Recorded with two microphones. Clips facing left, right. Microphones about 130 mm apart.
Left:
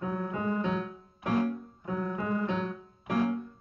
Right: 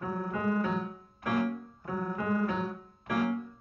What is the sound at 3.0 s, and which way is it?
Music, 25° left (ahead or behind).